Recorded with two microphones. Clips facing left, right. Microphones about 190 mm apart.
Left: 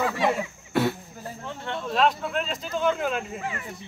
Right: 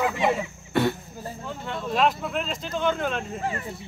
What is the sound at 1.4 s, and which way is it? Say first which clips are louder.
Speech: even; centre (ahead or behind).